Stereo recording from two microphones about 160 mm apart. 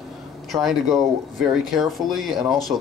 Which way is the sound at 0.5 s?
Centre (ahead or behind).